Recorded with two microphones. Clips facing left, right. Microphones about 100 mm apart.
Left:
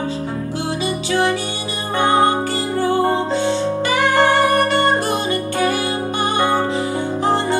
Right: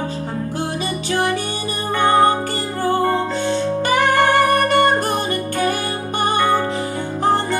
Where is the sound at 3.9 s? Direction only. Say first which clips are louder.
Even; 50° right (ahead or behind).